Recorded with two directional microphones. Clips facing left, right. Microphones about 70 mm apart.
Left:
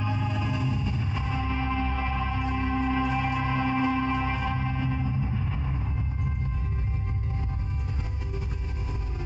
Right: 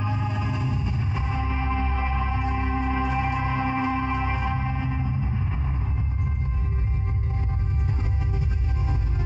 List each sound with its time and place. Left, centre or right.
0.0 s music: centre